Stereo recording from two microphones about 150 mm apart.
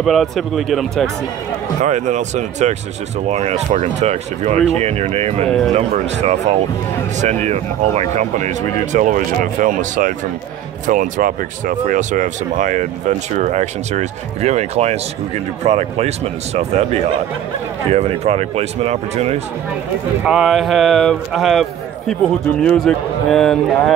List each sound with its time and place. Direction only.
0.0 s a man's voice: centre (ahead or behind)
1.8 s speech: 50° right (ahead or behind)
20.2 s a man's voice: centre (ahead or behind)